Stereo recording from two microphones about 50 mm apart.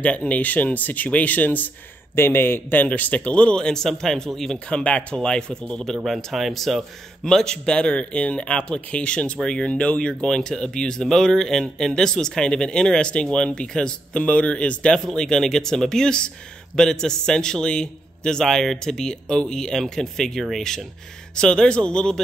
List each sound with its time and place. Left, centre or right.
0.0 s speech: left
2.1 s a man's voice: left; by 4.6 s centre
4.6 s speech: left
6.0 s speech: centre
7.2 s speech: centre
10.2 s speech: centre